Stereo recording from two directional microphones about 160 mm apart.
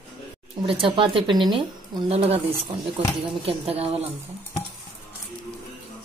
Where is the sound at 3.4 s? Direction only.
35° right (ahead or behind).